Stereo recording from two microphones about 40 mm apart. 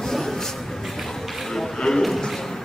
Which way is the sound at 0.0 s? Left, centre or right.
Centre.